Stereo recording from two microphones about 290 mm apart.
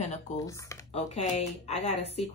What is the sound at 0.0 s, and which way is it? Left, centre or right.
Speech, left.